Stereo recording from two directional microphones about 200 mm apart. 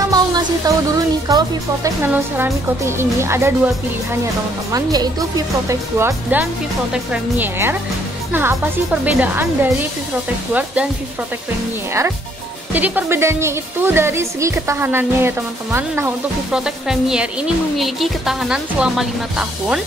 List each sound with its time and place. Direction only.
0.0 s music: 20° right (ahead or behind)
2.3 s speech: 10° right (ahead or behind)
5.7 s speech: 15° right (ahead or behind)
12.7 s a woman's voice: 10° right (ahead or behind)